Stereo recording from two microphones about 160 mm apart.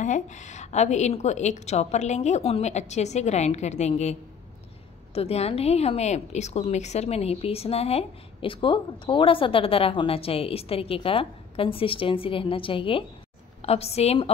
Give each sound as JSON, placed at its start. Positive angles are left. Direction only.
{"t": 0.0, "sound": "a woman's voice", "side_deg": 50}